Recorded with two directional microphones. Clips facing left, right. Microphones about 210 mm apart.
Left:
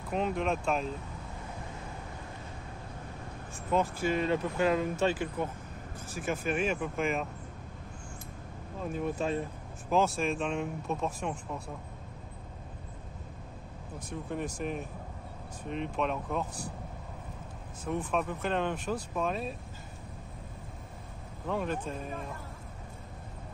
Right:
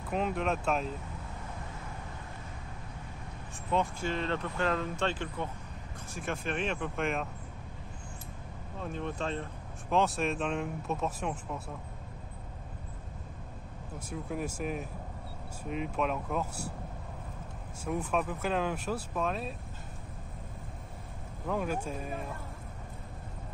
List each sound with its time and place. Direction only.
0.1 s speech: centre (ahead or behind)
3.7 s speech: 5° left (ahead or behind)
8.7 s speech: 5° left (ahead or behind)
14.0 s speech: 5° right (ahead or behind)
17.8 s speech: 5° right (ahead or behind)
21.5 s speech: 5° right (ahead or behind)